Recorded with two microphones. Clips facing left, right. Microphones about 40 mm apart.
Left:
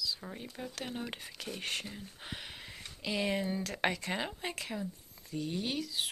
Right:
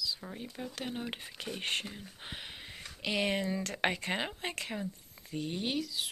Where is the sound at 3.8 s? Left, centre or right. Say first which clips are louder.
Right 1 dB; right.